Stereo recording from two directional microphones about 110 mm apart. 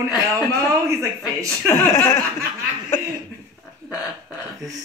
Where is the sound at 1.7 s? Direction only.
25° left (ahead or behind).